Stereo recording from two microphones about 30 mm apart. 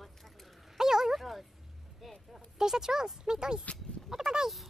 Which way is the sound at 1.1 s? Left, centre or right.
Centre.